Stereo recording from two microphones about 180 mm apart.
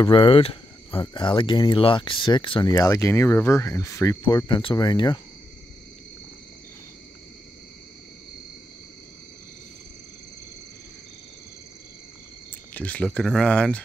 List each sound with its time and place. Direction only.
0.0 s speech: 30° left (ahead or behind)
4.2 s speech: 25° left (ahead or behind)
12.7 s speech: 10° left (ahead or behind)